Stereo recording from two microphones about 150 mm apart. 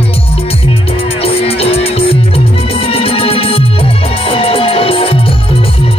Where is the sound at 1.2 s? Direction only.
40° left (ahead or behind).